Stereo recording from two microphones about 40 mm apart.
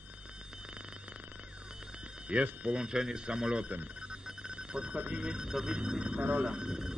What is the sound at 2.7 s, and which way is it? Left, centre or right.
Speech, centre.